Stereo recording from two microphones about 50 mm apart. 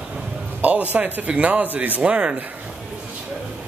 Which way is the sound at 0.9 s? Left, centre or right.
Right.